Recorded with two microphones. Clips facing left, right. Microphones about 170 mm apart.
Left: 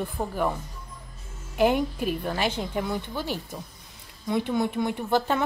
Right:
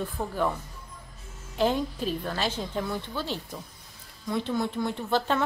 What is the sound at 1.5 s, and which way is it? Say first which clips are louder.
A woman's voice: left 3 dB; 15° left (ahead or behind).